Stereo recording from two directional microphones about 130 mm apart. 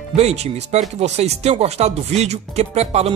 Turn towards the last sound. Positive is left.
turn(degrees=-55)  # may be behind; listen again after turning